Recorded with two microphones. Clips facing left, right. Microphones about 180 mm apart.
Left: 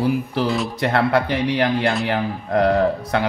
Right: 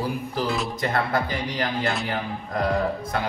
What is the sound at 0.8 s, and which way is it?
Speech, 70° left (ahead or behind).